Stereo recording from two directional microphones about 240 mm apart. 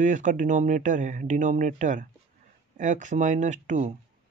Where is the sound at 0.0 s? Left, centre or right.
Right.